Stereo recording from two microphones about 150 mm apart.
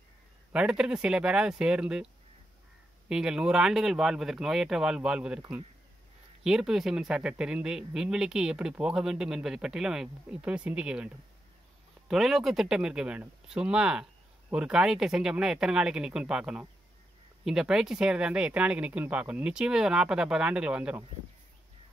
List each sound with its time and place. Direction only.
0.5 s speech: 5° right (ahead or behind)
3.1 s speech: 5° right (ahead or behind)
6.4 s speech: 5° right (ahead or behind)
12.1 s speech: centre (ahead or behind)